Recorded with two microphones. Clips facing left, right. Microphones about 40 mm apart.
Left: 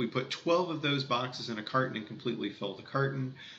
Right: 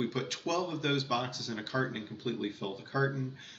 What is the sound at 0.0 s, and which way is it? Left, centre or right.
Speech, centre.